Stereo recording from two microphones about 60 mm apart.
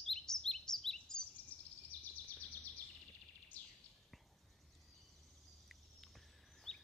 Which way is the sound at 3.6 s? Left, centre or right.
Left.